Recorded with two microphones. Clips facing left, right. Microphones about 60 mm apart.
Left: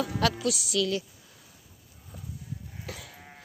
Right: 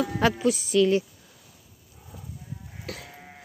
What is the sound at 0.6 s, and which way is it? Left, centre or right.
Speech, right.